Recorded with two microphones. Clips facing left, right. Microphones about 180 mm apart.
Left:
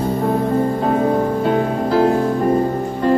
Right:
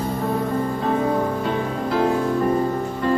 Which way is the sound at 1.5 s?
35° left (ahead or behind).